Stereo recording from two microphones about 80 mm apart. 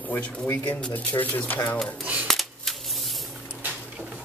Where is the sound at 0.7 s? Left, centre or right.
Centre.